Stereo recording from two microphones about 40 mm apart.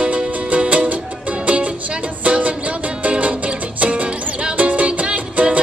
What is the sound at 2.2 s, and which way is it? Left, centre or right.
Music, right.